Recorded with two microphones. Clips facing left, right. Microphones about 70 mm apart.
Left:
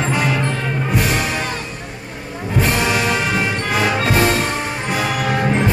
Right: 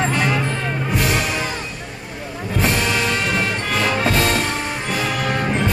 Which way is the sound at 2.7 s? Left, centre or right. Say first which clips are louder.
Left 2 dB; centre.